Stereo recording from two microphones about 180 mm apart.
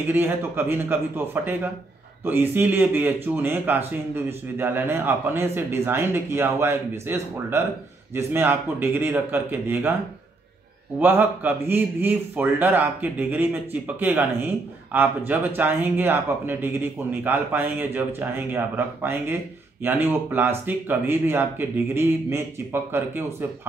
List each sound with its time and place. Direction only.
0.0 s a man's voice: 10° right (ahead or behind)
11.0 s a man's voice: 10° right (ahead or behind)